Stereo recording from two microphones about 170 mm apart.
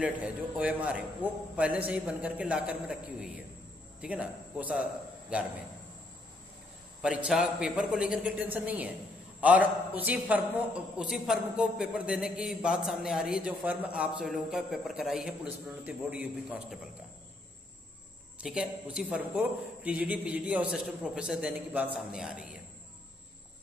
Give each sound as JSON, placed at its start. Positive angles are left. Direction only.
{"t": 0.0, "sound": "a man's voice", "side_deg": -5}
{"t": 7.0, "sound": "a man's voice", "side_deg": -5}
{"t": 18.4, "sound": "a man's voice", "side_deg": -5}